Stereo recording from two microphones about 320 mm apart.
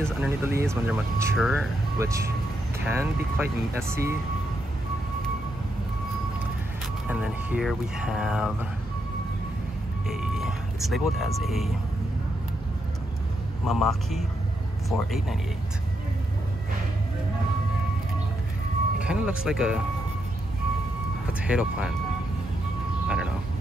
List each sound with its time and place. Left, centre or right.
0.0 s speech: centre
7.1 s speech: centre
10.0 s speech: centre
13.7 s speech: centre
18.9 s speech: centre
21.3 s speech: centre
23.0 s vehicle: centre